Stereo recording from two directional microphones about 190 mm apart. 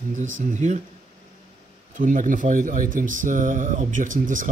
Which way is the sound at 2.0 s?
45° right (ahead or behind).